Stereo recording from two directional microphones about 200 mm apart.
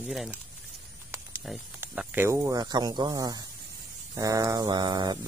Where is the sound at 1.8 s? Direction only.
10° right (ahead or behind).